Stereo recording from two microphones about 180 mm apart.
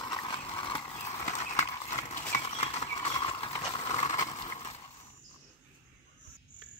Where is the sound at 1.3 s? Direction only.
40° left (ahead or behind).